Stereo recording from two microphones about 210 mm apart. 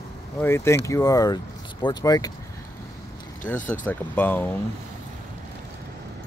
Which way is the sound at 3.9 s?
10° left (ahead or behind).